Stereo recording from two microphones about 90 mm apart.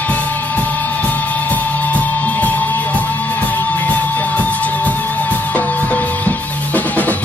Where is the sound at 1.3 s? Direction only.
15° left (ahead or behind).